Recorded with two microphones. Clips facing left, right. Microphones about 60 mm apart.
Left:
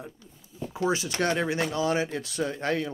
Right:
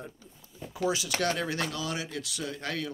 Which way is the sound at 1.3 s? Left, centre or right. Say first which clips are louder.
Left 5 dB; left.